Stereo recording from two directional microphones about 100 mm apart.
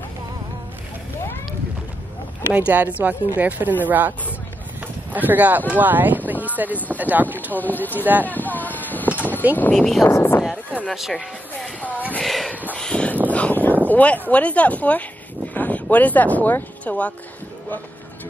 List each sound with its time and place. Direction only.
2.5 s speech: 15° right (ahead or behind)
5.1 s speech: 15° right (ahead or behind)
7.5 s speech: 15° left (ahead or behind)
7.9 s speech: 15° right (ahead or behind)
8.3 s a sound: 15° left (ahead or behind)
9.6 s speech: 10° left (ahead or behind)
10.0 s speech: 25° left (ahead or behind)
10.9 s speech: centre (ahead or behind)
12.2 s a sound: centre (ahead or behind); by 13.7 s 20° left (ahead or behind)
13.8 s speech: 15° left (ahead or behind)